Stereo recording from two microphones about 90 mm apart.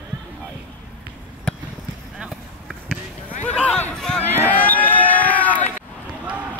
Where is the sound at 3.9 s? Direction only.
5° left (ahead or behind).